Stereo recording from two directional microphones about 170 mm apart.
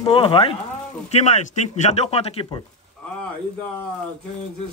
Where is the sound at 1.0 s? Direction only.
40° left (ahead or behind).